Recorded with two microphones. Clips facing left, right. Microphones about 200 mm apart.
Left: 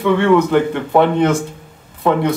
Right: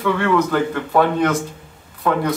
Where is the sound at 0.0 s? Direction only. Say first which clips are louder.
Left 5 dB; 20° left (ahead or behind).